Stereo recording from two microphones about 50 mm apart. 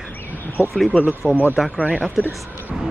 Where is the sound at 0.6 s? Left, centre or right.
Left.